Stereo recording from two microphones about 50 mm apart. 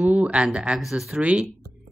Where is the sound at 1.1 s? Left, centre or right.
Right.